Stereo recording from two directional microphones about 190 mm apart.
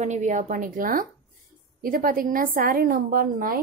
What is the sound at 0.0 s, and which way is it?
A woman's voice, 40° right (ahead or behind).